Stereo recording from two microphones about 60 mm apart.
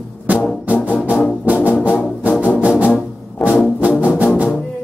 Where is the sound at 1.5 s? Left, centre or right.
Right.